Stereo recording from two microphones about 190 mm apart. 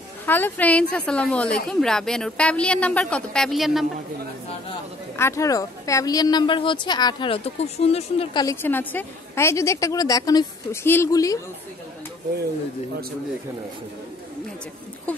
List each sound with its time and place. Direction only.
0.3 s a woman's voice: 10° left (ahead or behind)
5.1 s a woman's voice: 15° left (ahead or behind)
8.6 s a woman's voice: 10° left (ahead or behind)